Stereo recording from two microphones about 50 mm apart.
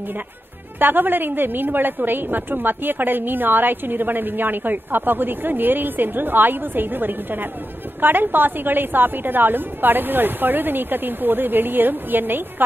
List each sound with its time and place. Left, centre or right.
0.7 s a woman's voice: right